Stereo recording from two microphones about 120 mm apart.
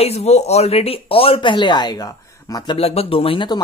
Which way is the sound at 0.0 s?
60° left (ahead or behind).